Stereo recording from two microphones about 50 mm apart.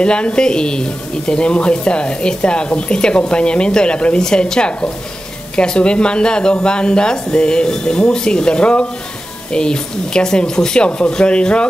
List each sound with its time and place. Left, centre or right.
0.0 s speech: centre